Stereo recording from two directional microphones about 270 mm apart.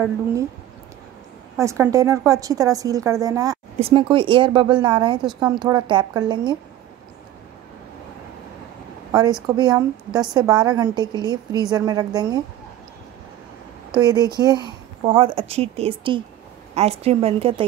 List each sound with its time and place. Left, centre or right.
1.6 s a woman's voice: centre
9.1 s a woman's voice: centre
13.9 s speech: centre